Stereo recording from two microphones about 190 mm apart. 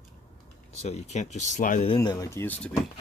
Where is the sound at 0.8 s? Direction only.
35° left (ahead or behind).